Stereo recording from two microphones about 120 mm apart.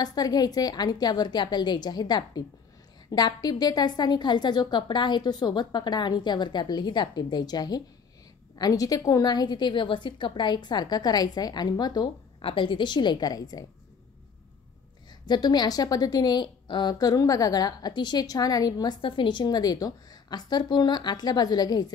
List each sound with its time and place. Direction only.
0.0 s a woman's voice: 35° left (ahead or behind)
15.2 s a woman's voice: 35° left (ahead or behind)